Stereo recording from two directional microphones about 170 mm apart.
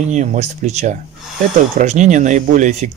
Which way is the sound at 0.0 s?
45° right (ahead or behind).